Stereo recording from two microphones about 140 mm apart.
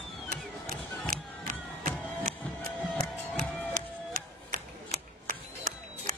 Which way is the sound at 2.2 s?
90° right.